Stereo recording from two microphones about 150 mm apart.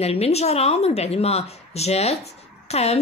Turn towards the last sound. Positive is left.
turn(degrees=45)  # may be behind; listen again after turning